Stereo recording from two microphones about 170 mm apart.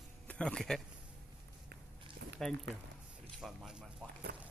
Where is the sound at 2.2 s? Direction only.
90° right.